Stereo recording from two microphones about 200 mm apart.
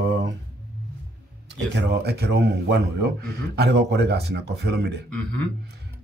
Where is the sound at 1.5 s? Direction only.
55° right (ahead or behind).